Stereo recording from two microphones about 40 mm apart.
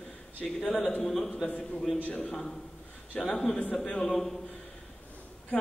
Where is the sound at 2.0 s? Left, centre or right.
Left.